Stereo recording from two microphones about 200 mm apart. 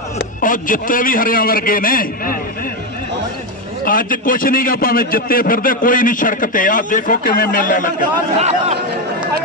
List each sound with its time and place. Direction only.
0.4 s a man's voice: 45° left (ahead or behind)
3.8 s a man's voice: 45° left (ahead or behind)
8.4 s speech: 35° right (ahead or behind)